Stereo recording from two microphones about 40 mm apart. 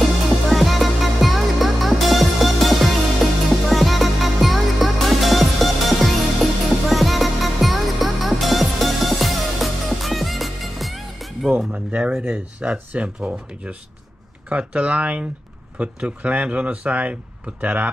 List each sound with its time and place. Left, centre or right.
0.5 s music: centre
11.7 s a sound: right
12.3 s speech: right